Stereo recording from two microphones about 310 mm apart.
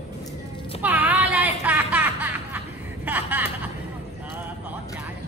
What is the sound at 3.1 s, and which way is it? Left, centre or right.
Chuckle, centre.